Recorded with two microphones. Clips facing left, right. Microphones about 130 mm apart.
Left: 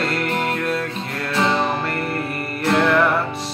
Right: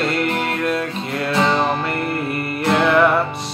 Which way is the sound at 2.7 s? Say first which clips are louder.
Right 1 dB; 15° right (ahead or behind).